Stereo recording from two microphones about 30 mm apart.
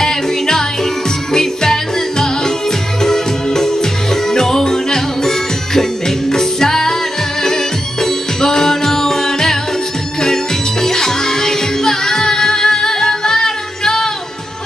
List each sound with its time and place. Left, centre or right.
0.0 s music: centre